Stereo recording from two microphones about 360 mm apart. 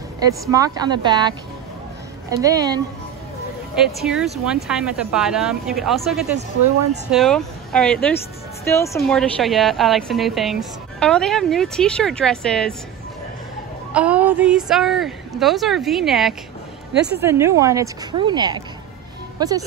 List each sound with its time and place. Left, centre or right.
0.5 s a woman's voice: centre
6.6 s speech: right
7.1 s a woman's voice: centre
13.9 s a woman's voice: centre